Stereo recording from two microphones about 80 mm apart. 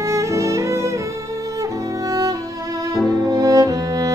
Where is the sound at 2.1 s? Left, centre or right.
Right.